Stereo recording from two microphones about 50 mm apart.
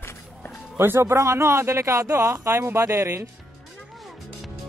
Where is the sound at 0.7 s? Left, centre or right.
Right.